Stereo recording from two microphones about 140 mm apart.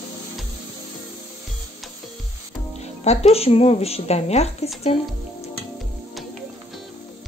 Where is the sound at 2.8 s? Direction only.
50° left (ahead or behind).